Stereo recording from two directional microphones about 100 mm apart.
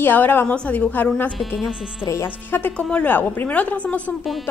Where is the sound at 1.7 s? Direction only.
10° right (ahead or behind).